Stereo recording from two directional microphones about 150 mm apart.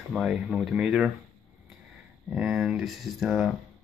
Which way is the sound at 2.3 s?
5° right (ahead or behind).